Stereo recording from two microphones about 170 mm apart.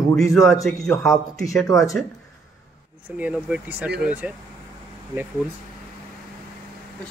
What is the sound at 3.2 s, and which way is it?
Speech, 5° right (ahead or behind).